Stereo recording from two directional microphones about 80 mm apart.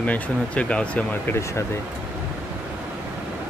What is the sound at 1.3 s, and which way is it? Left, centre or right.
Speech, left.